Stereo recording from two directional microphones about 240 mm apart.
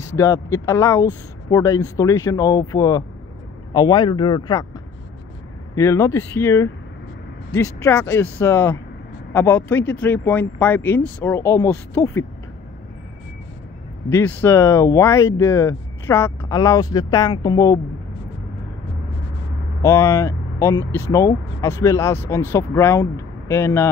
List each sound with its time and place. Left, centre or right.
0.1 s speech: centre
5.8 s speech: centre
14.1 s speech: centre
19.8 s speech: centre